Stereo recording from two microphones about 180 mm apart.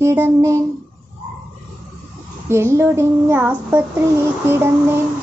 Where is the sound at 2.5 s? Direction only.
15° right (ahead or behind).